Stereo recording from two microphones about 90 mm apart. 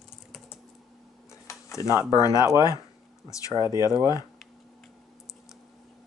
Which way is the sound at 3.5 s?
40° right (ahead or behind).